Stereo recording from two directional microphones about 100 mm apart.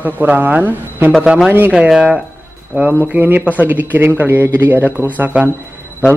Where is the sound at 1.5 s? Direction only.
20° right (ahead or behind).